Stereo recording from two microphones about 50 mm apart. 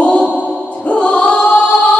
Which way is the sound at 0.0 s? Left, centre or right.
Left.